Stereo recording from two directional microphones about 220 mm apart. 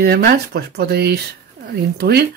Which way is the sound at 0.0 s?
45° right (ahead or behind).